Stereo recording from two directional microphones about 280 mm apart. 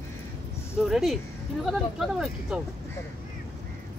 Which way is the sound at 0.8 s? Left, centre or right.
Centre.